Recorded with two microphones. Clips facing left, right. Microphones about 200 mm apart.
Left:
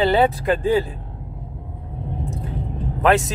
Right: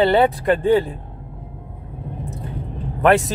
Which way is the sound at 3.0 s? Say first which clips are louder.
Right 2 dB; centre (ahead or behind).